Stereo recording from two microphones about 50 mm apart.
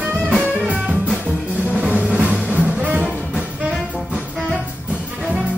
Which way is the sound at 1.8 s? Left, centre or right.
Right.